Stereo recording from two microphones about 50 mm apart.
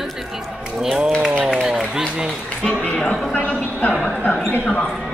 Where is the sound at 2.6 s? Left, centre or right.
Centre.